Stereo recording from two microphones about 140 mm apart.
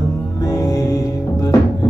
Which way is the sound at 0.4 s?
25° left (ahead or behind).